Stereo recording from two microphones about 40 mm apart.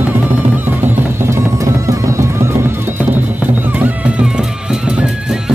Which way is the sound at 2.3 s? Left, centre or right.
Right.